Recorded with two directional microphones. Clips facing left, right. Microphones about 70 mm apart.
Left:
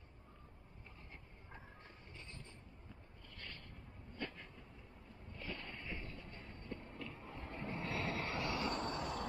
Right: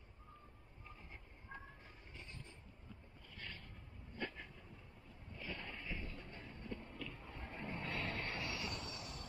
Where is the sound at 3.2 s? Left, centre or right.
Centre.